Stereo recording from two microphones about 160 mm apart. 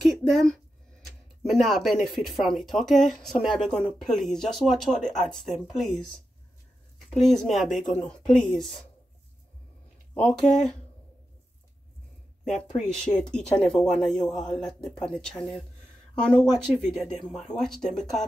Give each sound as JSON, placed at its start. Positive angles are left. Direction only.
{"t": 0.0, "sound": "speech", "side_deg": 0}
{"t": 1.0, "sound": "a sound", "side_deg": 0}
{"t": 2.0, "sound": "speech", "side_deg": 0}
{"t": 7.2, "sound": "speech", "side_deg": 0}
{"t": 10.4, "sound": "speech", "side_deg": 0}
{"t": 12.4, "sound": "speech", "side_deg": 0}